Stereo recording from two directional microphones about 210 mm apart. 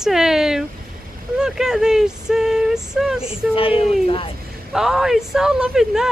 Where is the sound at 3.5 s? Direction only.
25° left (ahead or behind).